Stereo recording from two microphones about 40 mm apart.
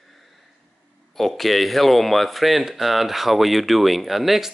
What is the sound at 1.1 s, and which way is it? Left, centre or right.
Speech, centre.